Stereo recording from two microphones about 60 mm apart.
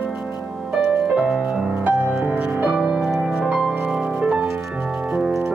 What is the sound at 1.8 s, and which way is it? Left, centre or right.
Music, right.